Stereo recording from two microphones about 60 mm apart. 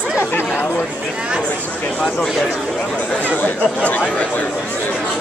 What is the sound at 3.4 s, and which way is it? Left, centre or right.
Speech, left.